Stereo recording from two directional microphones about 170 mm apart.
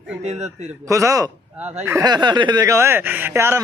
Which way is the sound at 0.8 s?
20° right (ahead or behind).